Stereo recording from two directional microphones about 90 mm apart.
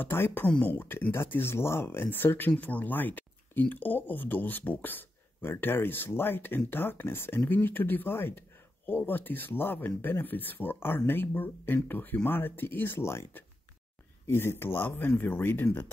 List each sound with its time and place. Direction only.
0.0 s speech: 25° left (ahead or behind)